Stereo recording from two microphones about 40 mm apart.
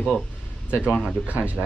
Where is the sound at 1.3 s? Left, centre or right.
Right.